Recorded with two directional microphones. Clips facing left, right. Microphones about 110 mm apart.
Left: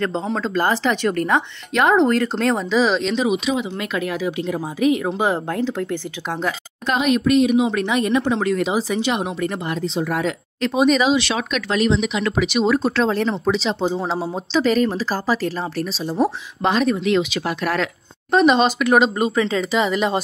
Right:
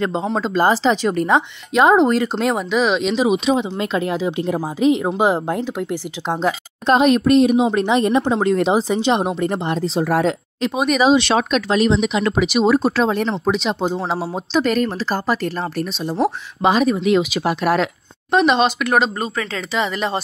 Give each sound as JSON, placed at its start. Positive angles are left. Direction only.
{"t": 0.4, "sound": "speech", "side_deg": -15}
{"t": 2.7, "sound": "speech", "side_deg": 0}
{"t": 3.0, "sound": "speech", "side_deg": -15}
{"t": 3.3, "sound": "speech", "side_deg": -30}
{"t": 6.9, "sound": "speech", "side_deg": -35}
{"t": 10.7, "sound": "speech", "side_deg": -5}
{"t": 11.7, "sound": "speech", "side_deg": -35}
{"t": 12.4, "sound": "speech", "side_deg": -15}
{"t": 18.3, "sound": "speech", "side_deg": 0}